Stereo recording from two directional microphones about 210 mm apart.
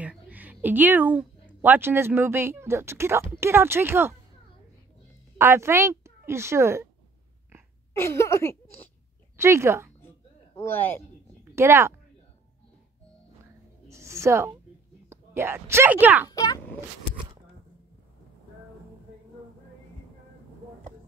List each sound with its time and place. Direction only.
0.0 s speech: 5° right (ahead or behind)
5.4 s a woman's voice: 10° right (ahead or behind)
7.9 s speech: 10° left (ahead or behind)
9.4 s speech: 10° right (ahead or behind)
10.0 s a sound: 10° left (ahead or behind)
11.5 s a woman's voice: 10° right (ahead or behind)
13.8 s a sound: 15° right (ahead or behind)
15.0 s speech: 10° right (ahead or behind)
16.3 s a child's voice: 15° left (ahead or behind)